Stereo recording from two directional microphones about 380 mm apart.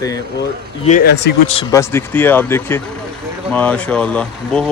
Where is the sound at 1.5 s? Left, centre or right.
Centre.